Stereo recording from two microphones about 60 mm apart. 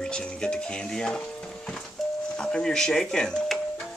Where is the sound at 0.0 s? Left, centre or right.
Centre.